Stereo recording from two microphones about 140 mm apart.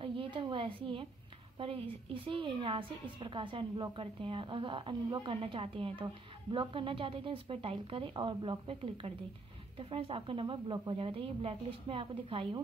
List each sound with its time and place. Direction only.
0.0 s a woman's voice: 40° right (ahead or behind)